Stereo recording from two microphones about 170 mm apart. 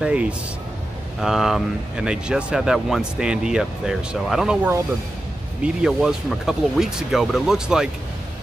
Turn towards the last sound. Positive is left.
turn(degrees=-5)  # may be behind; listen again after turning